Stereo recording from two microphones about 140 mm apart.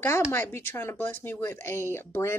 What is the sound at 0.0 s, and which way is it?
A woman's voice, 15° left (ahead or behind).